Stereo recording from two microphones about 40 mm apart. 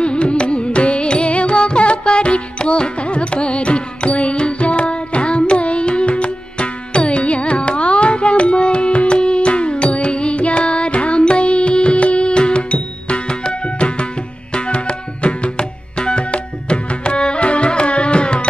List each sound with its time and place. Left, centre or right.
0.0 s carnatic music: left
14.5 s tabla: left